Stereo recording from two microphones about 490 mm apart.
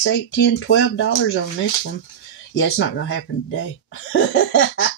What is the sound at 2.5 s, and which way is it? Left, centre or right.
Speech, left.